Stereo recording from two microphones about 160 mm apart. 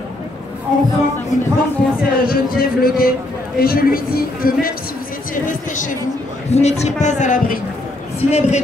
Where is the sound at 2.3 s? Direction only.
70° left (ahead or behind).